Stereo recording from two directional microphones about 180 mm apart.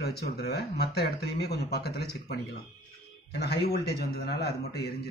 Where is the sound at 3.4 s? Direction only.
65° left (ahead or behind).